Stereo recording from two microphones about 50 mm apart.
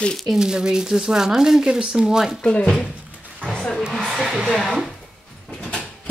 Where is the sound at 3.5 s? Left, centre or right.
Centre.